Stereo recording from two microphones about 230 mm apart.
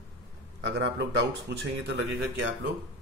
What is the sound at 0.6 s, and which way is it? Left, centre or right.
Speech, right.